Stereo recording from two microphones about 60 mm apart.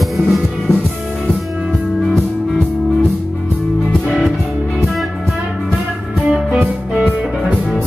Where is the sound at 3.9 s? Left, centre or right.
Centre.